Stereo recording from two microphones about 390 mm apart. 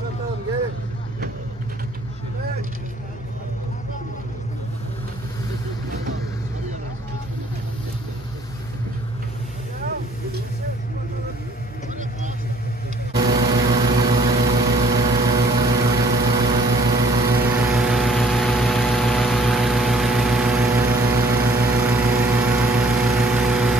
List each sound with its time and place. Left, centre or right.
13.2 s vehicle: centre